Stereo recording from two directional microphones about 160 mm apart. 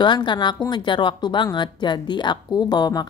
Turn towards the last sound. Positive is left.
turn(degrees=25)  # may be behind; listen again after turning